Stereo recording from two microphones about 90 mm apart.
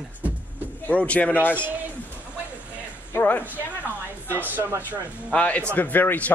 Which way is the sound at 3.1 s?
20° left (ahead or behind).